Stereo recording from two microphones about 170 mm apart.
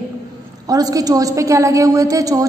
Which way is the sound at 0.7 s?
20° right (ahead or behind).